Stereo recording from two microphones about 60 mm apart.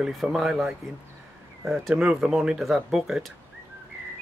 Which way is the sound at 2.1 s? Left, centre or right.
Centre.